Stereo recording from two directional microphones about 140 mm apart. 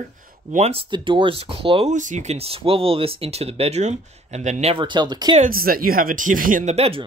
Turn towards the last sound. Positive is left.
turn(degrees=-45)  # may be behind; listen again after turning